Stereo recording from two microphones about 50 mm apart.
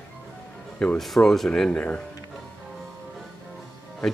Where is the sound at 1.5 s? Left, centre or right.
Left.